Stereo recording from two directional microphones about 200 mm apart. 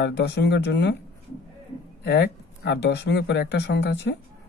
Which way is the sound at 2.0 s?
55° left (ahead or behind).